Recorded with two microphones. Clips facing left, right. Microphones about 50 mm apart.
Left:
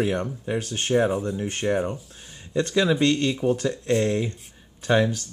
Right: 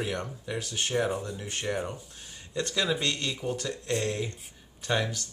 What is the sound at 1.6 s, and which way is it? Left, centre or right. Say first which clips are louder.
Speech: left 8 dB; left.